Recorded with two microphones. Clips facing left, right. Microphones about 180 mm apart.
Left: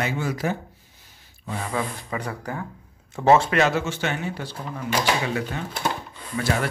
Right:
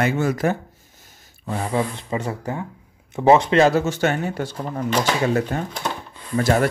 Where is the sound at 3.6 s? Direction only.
40° right (ahead or behind).